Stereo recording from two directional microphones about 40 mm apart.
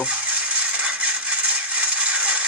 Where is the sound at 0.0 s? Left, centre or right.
Right.